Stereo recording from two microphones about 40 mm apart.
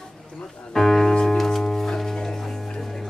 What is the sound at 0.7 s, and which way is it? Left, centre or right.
Music, centre.